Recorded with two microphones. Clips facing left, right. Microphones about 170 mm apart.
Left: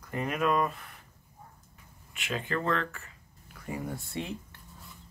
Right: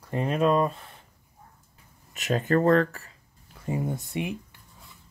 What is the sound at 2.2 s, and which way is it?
Speech, 40° right (ahead or behind).